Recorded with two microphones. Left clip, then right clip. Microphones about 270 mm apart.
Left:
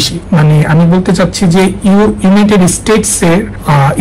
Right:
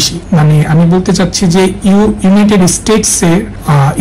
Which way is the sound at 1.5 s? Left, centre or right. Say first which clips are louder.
Even; left.